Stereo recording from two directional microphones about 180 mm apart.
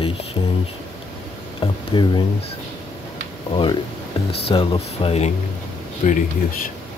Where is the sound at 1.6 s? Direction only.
25° left (ahead or behind).